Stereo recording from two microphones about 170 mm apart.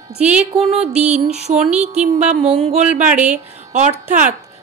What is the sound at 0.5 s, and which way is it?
Music, 35° right (ahead or behind).